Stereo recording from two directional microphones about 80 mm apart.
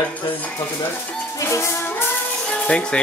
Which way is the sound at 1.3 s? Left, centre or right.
Left.